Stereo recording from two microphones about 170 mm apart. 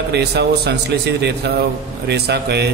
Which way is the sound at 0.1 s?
75° right (ahead or behind).